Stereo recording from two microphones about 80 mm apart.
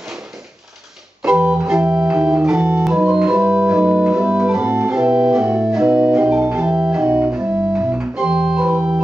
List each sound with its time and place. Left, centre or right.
1.2 s organ: centre
5.9 s keyboard: right
6.1 s organ: centre
7.1 s organ: right